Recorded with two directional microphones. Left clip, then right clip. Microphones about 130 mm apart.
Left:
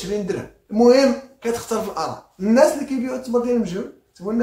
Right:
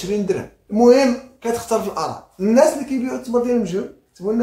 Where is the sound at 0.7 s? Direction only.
15° right (ahead or behind).